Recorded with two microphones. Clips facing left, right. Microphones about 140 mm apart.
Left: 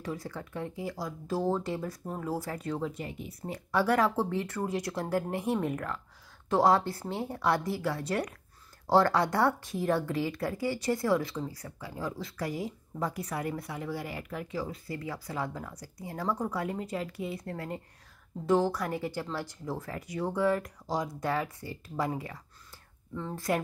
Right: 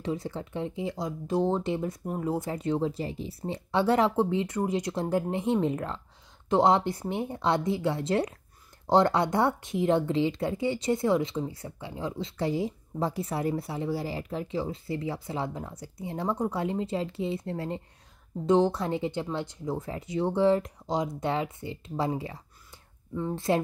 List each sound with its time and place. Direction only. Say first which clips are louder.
0.0 s speech: right 5 dB; 25° right (ahead or behind)